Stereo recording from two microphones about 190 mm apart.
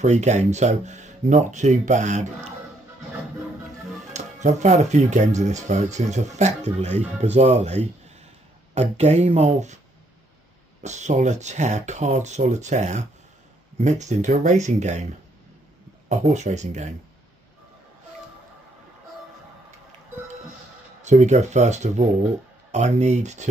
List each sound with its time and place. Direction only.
0.0 s speech: 35° right (ahead or behind)
4.1 s speech: 40° right (ahead or behind)
10.8 s speech: 40° right (ahead or behind)
21.0 s speech: 40° right (ahead or behind)